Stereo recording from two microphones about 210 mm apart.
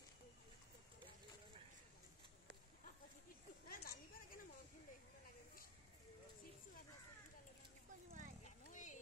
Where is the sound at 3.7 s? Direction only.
45° left (ahead or behind).